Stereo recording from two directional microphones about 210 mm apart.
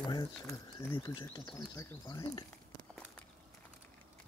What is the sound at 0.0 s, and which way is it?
Speech, 20° left (ahead or behind).